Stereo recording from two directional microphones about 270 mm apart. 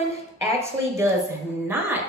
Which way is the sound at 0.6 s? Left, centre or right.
Centre.